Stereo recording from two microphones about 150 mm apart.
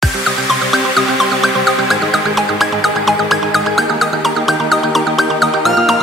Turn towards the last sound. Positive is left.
turn(degrees=0)  # may be behind; listen again after turning